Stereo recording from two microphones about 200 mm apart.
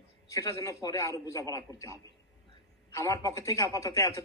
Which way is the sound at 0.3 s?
15° left (ahead or behind).